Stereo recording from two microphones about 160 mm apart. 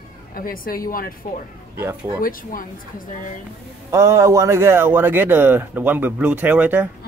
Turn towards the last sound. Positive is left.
turn(degrees=-10)  # may be behind; listen again after turning